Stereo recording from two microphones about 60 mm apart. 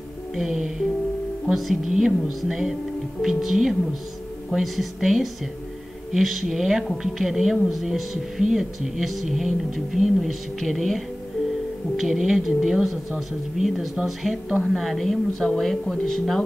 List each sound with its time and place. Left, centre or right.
0.4 s a woman's voice: centre
12.0 s a woman's voice: centre